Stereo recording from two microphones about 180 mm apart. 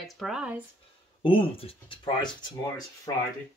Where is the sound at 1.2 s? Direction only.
30° left (ahead or behind).